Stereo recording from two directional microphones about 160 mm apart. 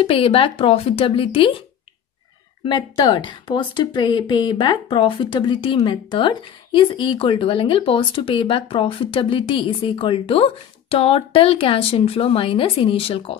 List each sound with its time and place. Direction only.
0.0 s speech: 35° left (ahead or behind)
2.6 s speech: 30° left (ahead or behind)